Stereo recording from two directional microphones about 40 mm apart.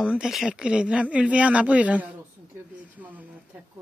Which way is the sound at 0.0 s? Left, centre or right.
Right.